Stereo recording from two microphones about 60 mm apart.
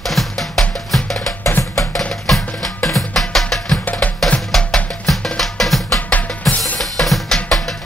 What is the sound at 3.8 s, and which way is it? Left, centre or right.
Music, left.